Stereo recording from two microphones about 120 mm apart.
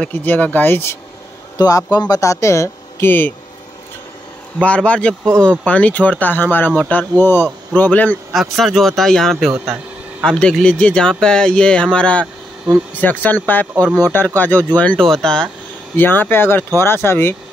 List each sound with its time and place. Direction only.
0.0 s speech: 15° left (ahead or behind)
1.6 s speech: 30° left (ahead or behind); by 3.3 s 15° left (ahead or behind)
4.6 s speech: 10° left (ahead or behind)
8.3 s speech: centre (ahead or behind)
16.0 s speech: 15° left (ahead or behind)